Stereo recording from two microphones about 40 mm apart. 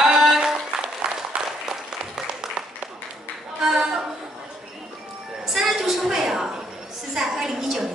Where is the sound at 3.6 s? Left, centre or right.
Centre.